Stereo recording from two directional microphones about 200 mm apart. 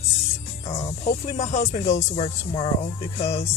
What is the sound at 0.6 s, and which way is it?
Speech, 35° left (ahead or behind).